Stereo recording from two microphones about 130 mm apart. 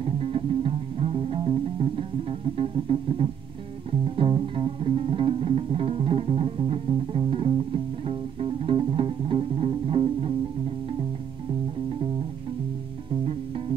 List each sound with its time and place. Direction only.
0.0 s music: 45° right (ahead or behind)